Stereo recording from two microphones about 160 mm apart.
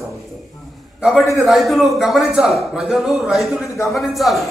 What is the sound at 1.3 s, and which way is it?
A man's voice, centre (ahead or behind).